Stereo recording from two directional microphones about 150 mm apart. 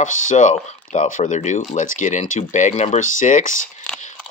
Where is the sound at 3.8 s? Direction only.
5° left (ahead or behind).